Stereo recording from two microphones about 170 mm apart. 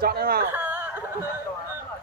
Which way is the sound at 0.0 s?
65° right (ahead or behind).